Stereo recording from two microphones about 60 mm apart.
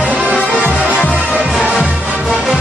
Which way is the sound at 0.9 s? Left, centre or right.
Left.